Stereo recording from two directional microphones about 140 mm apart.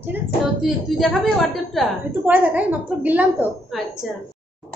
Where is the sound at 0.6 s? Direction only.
Centre (ahead or behind).